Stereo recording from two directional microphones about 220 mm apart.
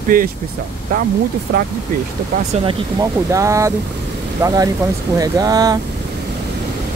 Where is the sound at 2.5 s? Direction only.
20° right (ahead or behind).